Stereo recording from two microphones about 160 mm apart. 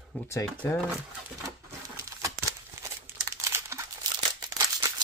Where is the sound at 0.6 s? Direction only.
20° left (ahead or behind).